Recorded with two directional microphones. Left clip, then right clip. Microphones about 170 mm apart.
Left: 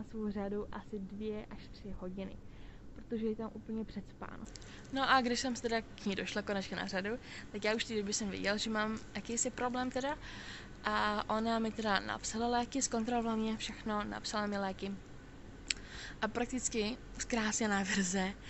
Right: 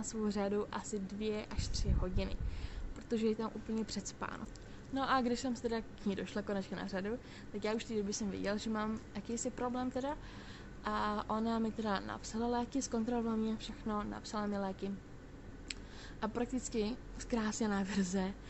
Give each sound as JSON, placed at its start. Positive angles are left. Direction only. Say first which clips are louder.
{"t": 0.1, "sound": "a woman's voice", "louder": "right 3 dB", "side_deg": -15}